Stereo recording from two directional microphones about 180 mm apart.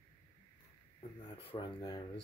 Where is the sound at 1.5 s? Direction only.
25° left (ahead or behind).